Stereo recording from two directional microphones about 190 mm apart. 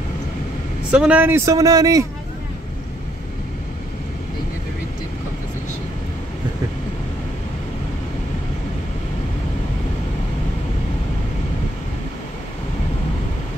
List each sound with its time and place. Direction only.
0.9 s a man's voice: 5° right (ahead or behind)